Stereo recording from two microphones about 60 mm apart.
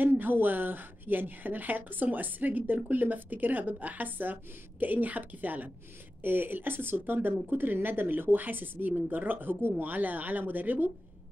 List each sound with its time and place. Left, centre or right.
0.0 s a woman's voice: right